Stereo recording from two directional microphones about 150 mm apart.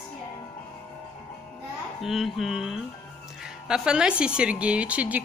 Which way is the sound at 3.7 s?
5° right (ahead or behind).